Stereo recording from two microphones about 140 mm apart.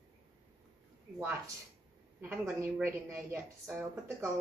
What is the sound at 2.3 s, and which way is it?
A woman's voice, 20° right (ahead or behind).